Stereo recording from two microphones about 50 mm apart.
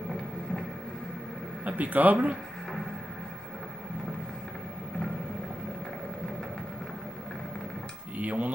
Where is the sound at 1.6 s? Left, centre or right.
Right.